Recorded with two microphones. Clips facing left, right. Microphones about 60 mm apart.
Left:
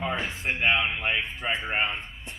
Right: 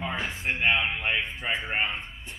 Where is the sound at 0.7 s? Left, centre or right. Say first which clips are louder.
Left 1 dB; centre.